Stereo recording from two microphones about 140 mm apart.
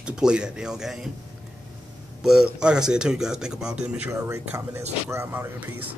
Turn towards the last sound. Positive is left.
turn(degrees=-15)  # may be behind; listen again after turning